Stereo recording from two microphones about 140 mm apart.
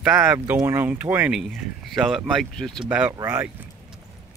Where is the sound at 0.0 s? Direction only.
5° right (ahead or behind).